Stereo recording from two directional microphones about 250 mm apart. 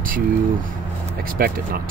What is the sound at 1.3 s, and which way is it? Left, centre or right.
Speech, right.